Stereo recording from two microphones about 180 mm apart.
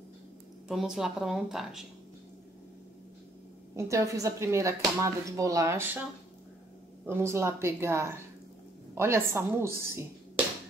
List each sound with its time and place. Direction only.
0.7 s a woman's voice: 5° right (ahead or behind)
3.7 s speech: 15° right (ahead or behind)
7.1 s speech: 15° right (ahead or behind)